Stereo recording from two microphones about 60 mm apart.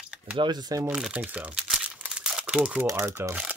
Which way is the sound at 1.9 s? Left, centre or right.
Centre.